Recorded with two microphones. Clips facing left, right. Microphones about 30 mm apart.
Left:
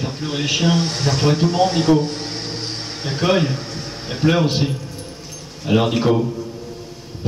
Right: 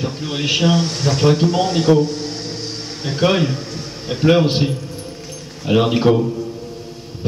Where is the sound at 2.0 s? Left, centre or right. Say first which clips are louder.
Right 2 dB; left.